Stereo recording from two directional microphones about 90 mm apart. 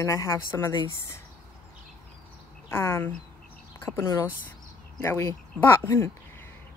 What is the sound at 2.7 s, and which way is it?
Speech, 25° left (ahead or behind).